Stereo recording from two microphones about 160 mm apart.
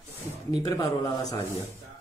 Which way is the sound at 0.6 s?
20° left (ahead or behind).